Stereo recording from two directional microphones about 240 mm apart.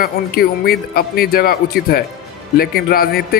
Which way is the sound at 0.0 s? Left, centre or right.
Left.